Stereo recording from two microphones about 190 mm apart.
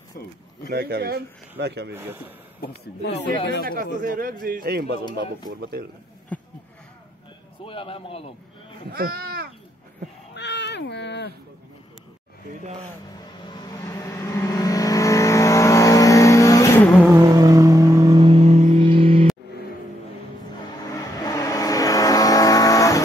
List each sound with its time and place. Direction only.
0.7 s a man's voice: 55° right (ahead or behind)
2.0 s a man's voice: 10° right (ahead or behind)
2.6 s speech: 60° left (ahead or behind)
3.6 s a man's voice: 50° right (ahead or behind)
6.3 s a sound: 10° left (ahead or behind)
7.6 s a man's voice: 30° left (ahead or behind)
8.9 s speech: 50° right (ahead or behind)
10.3 s speech: 65° left (ahead or behind)
13.6 s vehicle: 20° left (ahead or behind)
17.0 s vehicle: 15° right (ahead or behind)
20.9 s vehicle: 20° left (ahead or behind)